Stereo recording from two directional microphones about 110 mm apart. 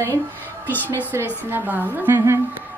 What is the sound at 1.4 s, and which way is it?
Speech, 15° right (ahead or behind).